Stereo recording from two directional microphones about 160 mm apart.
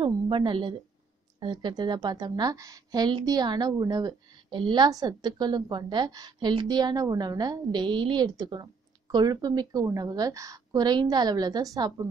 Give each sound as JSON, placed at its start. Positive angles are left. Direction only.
{"t": 0.0, "sound": "a woman's voice", "side_deg": -30}